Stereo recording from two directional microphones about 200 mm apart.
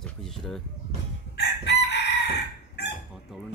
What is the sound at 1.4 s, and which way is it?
Chicken, 60° left (ahead or behind).